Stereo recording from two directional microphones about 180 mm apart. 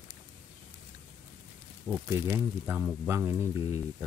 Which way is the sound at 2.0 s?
15° right (ahead or behind).